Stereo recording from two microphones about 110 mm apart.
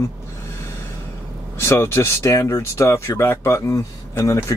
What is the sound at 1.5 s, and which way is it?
Speech, 25° left (ahead or behind).